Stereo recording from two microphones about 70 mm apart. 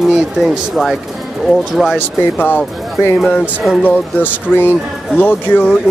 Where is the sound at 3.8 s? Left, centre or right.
Left.